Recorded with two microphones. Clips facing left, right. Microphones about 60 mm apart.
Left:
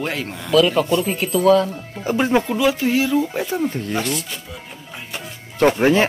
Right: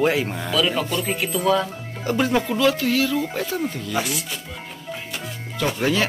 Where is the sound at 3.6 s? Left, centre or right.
Left.